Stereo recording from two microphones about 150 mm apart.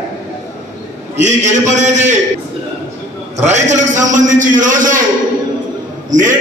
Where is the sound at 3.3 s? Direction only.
50° right (ahead or behind).